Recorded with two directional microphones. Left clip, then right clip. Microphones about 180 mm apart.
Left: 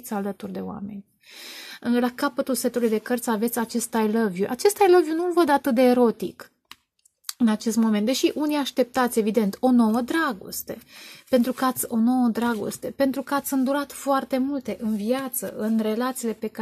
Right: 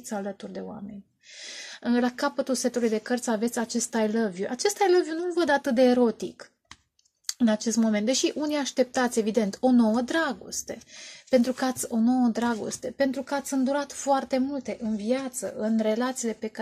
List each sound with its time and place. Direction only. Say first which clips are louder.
0.1 s speech: left 3 dB; 35° left (ahead or behind)
1.8 s speech: left 2 dB; 35° left (ahead or behind)